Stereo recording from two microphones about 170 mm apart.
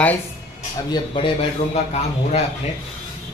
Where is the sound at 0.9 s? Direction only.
30° left (ahead or behind).